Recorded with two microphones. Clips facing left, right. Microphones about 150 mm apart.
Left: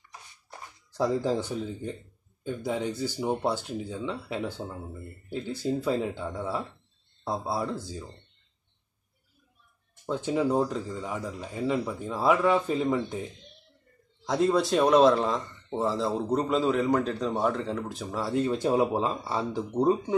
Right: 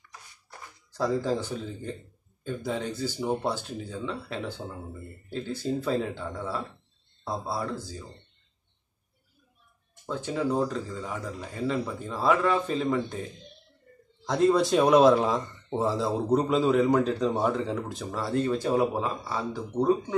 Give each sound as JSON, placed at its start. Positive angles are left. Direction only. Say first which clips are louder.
{"t": 0.5, "sound": "a man's voice", "louder": "left 2 dB", "side_deg": 20}
{"t": 10.0, "sound": "a man's voice", "louder": "left 2 dB", "side_deg": 20}
{"t": 14.2, "sound": "speech", "louder": "right 2 dB", "side_deg": 5}